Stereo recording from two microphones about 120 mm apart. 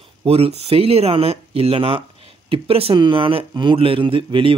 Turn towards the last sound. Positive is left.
turn(degrees=-45)  # may be behind; listen again after turning